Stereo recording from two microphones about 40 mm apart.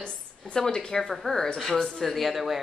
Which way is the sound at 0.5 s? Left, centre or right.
Centre.